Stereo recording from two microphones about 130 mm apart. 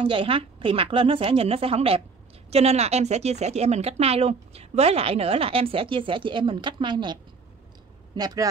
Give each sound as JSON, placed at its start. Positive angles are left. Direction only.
{"t": 0.0, "sound": "speech", "side_deg": -45}